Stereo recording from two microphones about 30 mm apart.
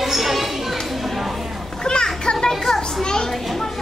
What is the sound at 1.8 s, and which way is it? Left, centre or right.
Children playing, left.